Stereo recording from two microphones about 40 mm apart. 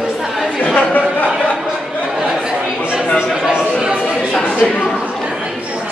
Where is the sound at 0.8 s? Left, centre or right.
Left.